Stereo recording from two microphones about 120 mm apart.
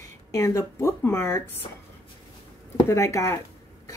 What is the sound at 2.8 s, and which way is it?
Speech, 25° left (ahead or behind).